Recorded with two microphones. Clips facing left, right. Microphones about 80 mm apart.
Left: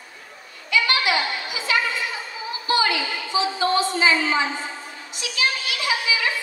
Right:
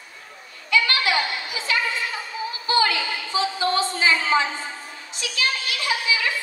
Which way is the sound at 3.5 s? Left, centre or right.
Left.